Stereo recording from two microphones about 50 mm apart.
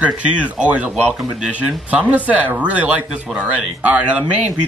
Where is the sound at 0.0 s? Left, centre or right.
Right.